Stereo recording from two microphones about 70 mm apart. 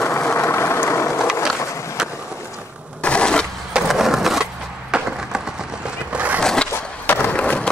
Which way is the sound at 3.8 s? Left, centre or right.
Centre.